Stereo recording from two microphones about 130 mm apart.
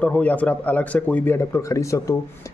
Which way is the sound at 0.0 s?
10° left (ahead or behind).